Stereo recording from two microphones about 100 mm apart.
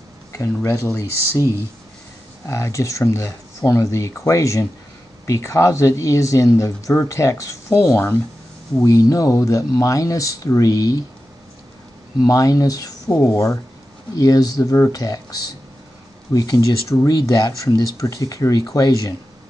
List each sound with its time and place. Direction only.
0.6 s speech: 30° left (ahead or behind)
2.4 s speech: 30° left (ahead or behind)
8.8 s speech: 35° left (ahead or behind)
12.2 s speech: 35° left (ahead or behind)